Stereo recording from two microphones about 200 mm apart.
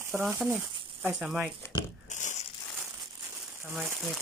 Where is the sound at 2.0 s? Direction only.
40° left (ahead or behind).